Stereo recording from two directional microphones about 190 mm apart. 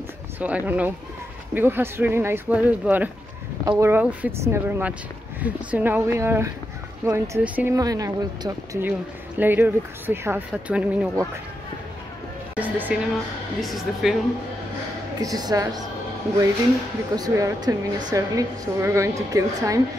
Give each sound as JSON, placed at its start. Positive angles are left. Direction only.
{"t": 0.4, "sound": "speech", "side_deg": -10}
{"t": 12.5, "sound": "speech", "side_deg": -10}
{"t": 15.1, "sound": "speech", "side_deg": -20}
{"t": 17.1, "sound": "speech", "side_deg": -20}